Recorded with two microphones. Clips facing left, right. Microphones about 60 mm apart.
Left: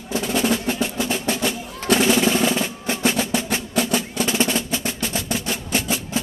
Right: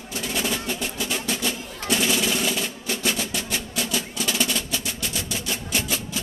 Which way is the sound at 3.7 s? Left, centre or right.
Left.